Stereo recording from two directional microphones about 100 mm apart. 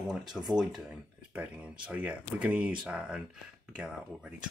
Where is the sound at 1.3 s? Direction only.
15° right (ahead or behind).